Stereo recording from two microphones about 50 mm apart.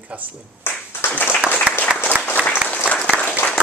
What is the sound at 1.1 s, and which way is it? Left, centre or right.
Applause, left.